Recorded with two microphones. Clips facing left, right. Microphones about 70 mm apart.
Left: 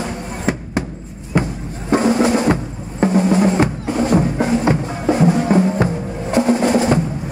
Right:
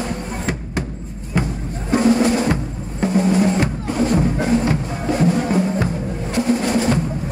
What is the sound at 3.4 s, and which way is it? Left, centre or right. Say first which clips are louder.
Music: left 2 dB; centre.